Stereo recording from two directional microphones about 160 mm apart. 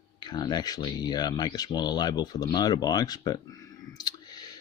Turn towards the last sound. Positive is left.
turn(degrees=25)  # may be behind; listen again after turning